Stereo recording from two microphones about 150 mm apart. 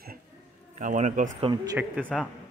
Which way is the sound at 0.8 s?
55° right (ahead or behind).